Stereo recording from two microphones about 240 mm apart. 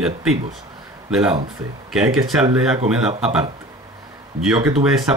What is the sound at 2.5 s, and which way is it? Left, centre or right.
Speech, centre.